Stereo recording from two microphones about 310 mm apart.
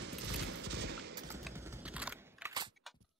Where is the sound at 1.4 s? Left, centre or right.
Centre.